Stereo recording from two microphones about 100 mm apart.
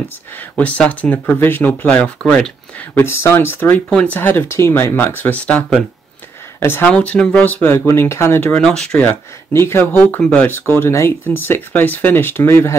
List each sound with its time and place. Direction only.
0.4 s speech: 15° left (ahead or behind)
2.9 s speech: 25° left (ahead or behind)
6.9 s speech: 10° left (ahead or behind)
8.5 s speech: 5° left (ahead or behind)
9.0 s speech: 25° left (ahead or behind)